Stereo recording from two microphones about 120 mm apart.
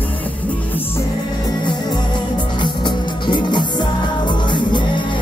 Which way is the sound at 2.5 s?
40° left (ahead or behind).